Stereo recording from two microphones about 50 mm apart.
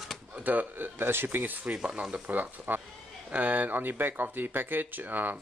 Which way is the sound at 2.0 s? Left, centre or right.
Right.